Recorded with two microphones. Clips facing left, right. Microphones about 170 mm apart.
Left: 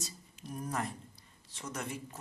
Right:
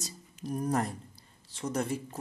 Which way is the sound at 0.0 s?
40° right (ahead or behind).